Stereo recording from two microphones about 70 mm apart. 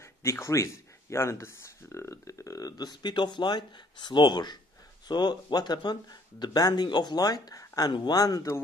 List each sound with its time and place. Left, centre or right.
0.0 s speech: left